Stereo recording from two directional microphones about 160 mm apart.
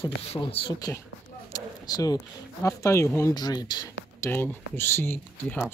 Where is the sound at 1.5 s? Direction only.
25° left (ahead or behind).